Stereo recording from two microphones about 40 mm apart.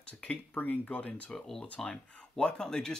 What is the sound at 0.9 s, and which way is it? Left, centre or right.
Speech, left.